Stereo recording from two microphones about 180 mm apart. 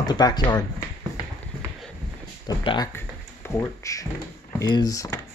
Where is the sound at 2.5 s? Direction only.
20° left (ahead or behind).